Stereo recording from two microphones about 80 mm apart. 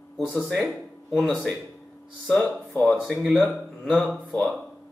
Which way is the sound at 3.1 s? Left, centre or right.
Centre.